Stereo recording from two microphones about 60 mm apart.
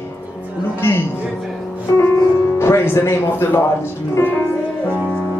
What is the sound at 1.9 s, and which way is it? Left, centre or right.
Speech, left.